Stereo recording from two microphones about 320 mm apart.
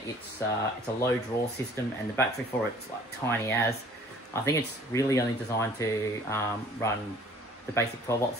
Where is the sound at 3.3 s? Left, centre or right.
Centre.